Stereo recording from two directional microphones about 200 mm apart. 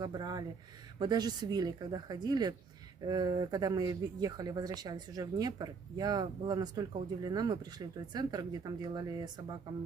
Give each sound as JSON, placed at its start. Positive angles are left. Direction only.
{"t": 0.0, "sound": "speech", "side_deg": -20}